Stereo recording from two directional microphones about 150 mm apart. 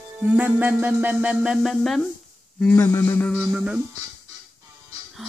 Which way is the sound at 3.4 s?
5° right (ahead or behind).